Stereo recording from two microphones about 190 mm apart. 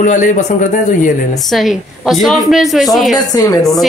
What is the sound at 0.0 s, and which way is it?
Speech, 40° left (ahead or behind).